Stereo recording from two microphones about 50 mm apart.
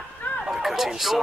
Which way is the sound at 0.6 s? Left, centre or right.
Centre.